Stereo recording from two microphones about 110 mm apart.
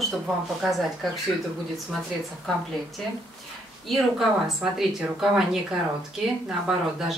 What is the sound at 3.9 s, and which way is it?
Speech, centre (ahead or behind).